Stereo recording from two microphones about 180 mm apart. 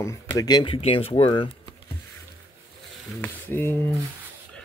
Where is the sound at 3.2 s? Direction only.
10° left (ahead or behind).